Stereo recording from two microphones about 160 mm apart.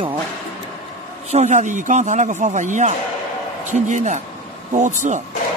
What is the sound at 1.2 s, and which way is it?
Speech, 45° right (ahead or behind).